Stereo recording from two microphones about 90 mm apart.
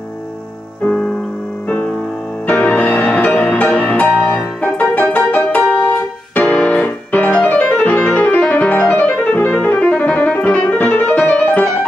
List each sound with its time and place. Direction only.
2.4 s music: 20° left (ahead or behind)